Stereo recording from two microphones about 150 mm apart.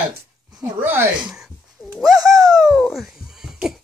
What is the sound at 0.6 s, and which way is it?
Speech, 15° right (ahead or behind).